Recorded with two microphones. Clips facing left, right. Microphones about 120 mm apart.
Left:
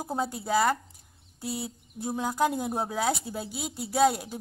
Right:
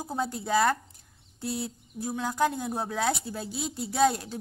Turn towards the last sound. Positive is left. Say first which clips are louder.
# left 1 dB
turn(degrees=10)  # may be behind; listen again after turning